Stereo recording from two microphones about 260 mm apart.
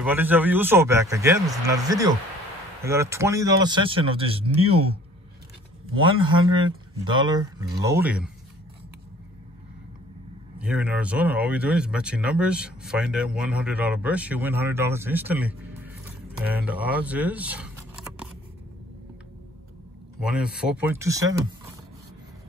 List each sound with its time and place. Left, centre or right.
0.0 s speech: centre
5.9 s speech: centre
10.6 s speech: centre
20.2 s speech: centre